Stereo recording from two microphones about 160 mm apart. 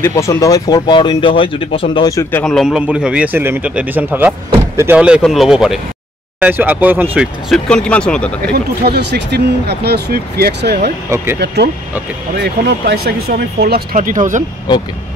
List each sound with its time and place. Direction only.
0.0 s speech: 20° left (ahead or behind); by 2.0 s 35° left (ahead or behind)
2.0 s speech: 20° left (ahead or behind)
2.4 s a man's voice: centre (ahead or behind)
8.4 s speech: 80° right
13.9 s speech: 55° right (ahead or behind)